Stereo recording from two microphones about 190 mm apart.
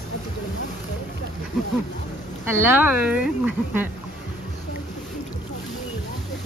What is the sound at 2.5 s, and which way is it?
Speech, 10° right (ahead or behind).